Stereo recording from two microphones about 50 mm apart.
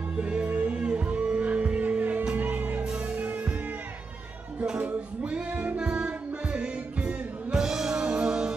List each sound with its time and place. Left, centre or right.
0.2 s music: right
4.6 s music: right
7.6 s music: centre